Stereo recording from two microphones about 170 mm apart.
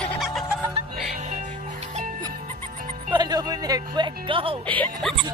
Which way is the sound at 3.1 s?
25° right (ahead or behind).